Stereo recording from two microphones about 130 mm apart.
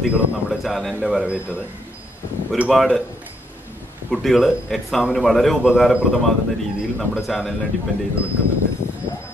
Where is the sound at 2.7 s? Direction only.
Centre (ahead or behind).